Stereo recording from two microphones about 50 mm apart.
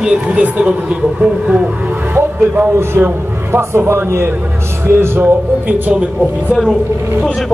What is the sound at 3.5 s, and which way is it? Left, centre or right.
A man's voice, right.